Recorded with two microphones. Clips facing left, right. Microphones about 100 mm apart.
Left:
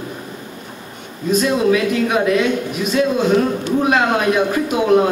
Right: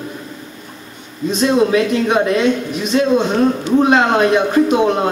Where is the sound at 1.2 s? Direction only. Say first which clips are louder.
Right 1 dB; 25° right (ahead or behind).